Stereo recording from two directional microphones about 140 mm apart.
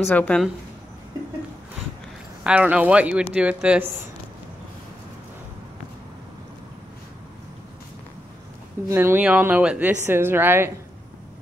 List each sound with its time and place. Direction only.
0.1 s speech: 10° left (ahead or behind)
2.4 s a woman's voice: 10° right (ahead or behind)
8.8 s a woman's voice: 15° right (ahead or behind)